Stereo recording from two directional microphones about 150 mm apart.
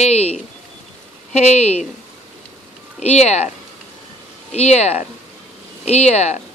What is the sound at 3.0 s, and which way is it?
Speech, 45° left (ahead or behind).